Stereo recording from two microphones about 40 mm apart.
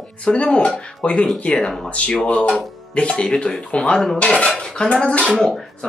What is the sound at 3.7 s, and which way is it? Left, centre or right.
Speech, left.